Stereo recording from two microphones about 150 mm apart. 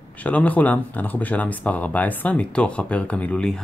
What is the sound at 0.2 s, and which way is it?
Speech, 10° left (ahead or behind).